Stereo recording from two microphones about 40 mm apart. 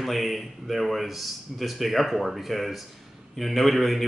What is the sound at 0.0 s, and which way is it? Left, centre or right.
Speech, centre.